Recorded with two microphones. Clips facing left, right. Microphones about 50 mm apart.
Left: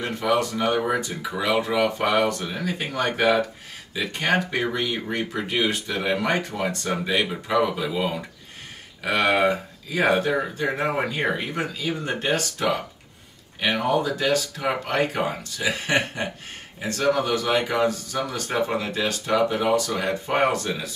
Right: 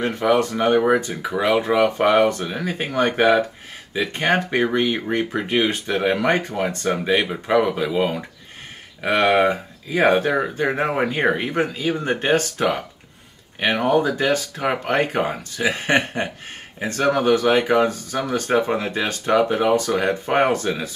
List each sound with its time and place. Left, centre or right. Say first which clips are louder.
0.0 s speech: right 4 dB; right